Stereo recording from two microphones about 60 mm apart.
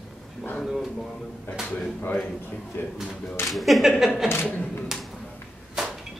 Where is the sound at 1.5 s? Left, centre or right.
Left.